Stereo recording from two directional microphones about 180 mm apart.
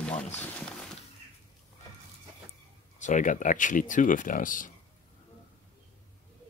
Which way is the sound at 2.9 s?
40° left (ahead or behind).